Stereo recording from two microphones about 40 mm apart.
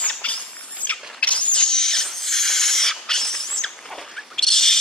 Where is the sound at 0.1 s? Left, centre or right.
Left.